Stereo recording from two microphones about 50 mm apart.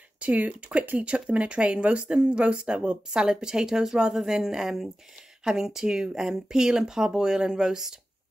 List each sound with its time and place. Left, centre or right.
0.2 s speech: right; by 8.0 s centre